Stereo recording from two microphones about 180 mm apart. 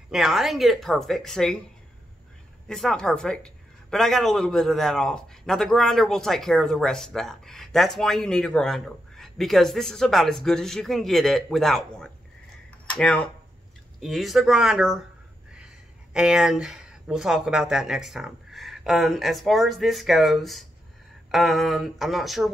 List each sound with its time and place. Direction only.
0.1 s speech: centre (ahead or behind)
2.7 s speech: 5° left (ahead or behind)